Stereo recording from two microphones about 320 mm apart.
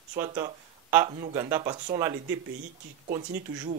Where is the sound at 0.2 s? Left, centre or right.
Centre.